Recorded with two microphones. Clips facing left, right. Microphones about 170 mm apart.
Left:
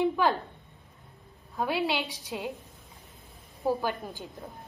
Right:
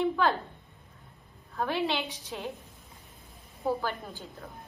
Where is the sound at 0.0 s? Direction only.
15° left (ahead or behind).